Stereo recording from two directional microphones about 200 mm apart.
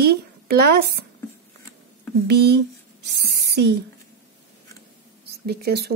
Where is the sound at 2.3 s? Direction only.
55° right (ahead or behind).